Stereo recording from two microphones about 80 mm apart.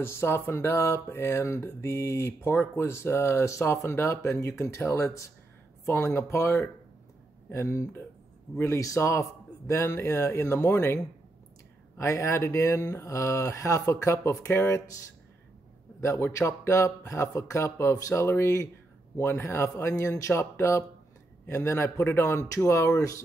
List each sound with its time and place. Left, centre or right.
0.0 s speech: left
12.0 s speech: left
16.0 s speech: left